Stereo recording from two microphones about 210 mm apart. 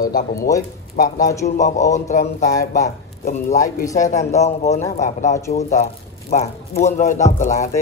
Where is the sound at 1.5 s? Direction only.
35° left (ahead or behind).